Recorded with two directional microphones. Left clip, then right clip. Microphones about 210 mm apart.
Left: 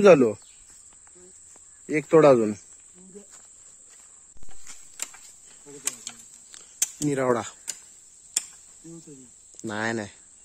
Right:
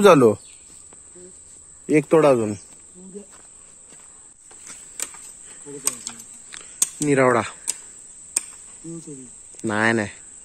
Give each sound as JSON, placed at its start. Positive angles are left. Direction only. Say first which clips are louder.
{"t": 0.0, "sound": "speech", "louder": "right 3 dB", "side_deg": -15}
{"t": 1.9, "sound": "speech", "louder": "right 1 dB", "side_deg": 0}
{"t": 5.7, "sound": "computer keyboard", "louder": "right 5 dB", "side_deg": 5}
{"t": 9.6, "sound": "speech", "louder": "right 9 dB", "side_deg": 10}